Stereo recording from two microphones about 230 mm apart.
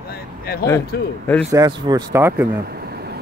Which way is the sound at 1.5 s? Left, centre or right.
Centre.